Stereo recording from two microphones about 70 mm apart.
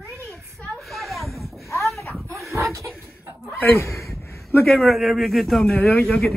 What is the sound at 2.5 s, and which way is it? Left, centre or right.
Chuckle, right.